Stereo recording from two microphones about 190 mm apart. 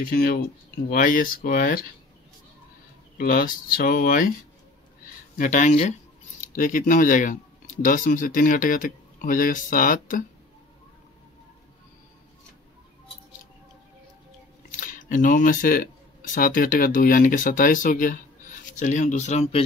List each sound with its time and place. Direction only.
0.0 s speech: 50° left (ahead or behind)
3.2 s speech: 50° left (ahead or behind)
5.4 s speech: 40° left (ahead or behind)
14.7 s speech: 45° left (ahead or behind)